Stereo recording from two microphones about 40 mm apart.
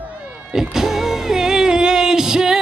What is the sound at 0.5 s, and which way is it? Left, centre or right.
Music, centre.